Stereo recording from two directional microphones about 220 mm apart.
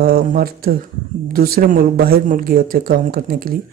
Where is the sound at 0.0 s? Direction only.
40° right (ahead or behind).